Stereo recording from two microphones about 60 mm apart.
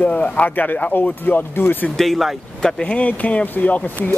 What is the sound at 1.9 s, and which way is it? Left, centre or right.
Speech, centre.